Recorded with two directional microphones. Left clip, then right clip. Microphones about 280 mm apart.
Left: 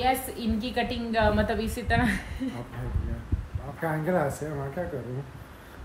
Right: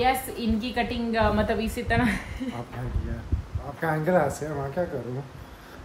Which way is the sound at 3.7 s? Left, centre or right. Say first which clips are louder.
Right 4 dB; centre.